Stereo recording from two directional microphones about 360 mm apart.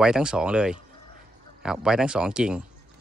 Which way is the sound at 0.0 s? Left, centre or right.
Centre.